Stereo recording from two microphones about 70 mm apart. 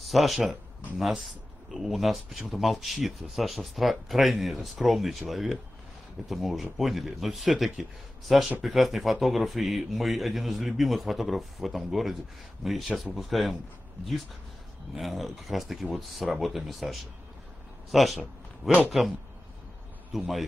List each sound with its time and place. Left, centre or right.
0.0 s a man's voice: centre
15.0 s a man's voice: centre